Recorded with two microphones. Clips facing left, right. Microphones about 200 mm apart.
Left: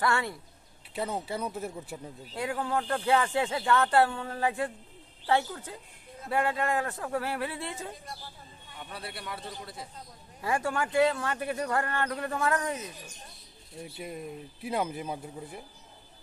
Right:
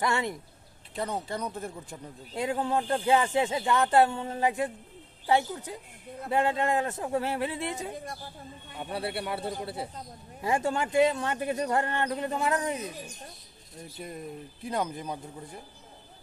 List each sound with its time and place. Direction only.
0.0 s speech: 20° right (ahead or behind)
0.9 s speech: 5° left (ahead or behind)
2.3 s speech: 20° right (ahead or behind)
8.8 s a man's voice: 30° right (ahead or behind)
13.8 s speech: 5° left (ahead or behind)